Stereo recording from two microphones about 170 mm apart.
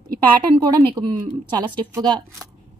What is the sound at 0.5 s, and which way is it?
Speech, 25° right (ahead or behind).